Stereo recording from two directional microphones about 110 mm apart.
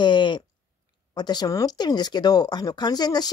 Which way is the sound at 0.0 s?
45° left (ahead or behind).